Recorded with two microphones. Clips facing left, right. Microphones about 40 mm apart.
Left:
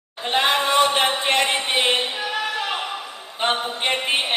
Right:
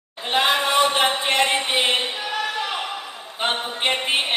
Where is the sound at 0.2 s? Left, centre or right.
Centre.